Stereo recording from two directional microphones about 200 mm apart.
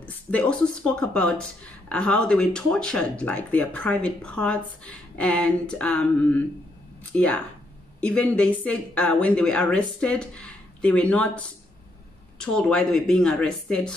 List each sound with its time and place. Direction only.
0.0 s speech: 5° left (ahead or behind)